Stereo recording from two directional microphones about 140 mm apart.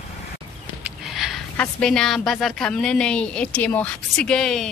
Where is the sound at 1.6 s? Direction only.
5° left (ahead or behind).